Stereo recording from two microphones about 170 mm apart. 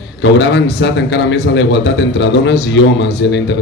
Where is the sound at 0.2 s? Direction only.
90° left.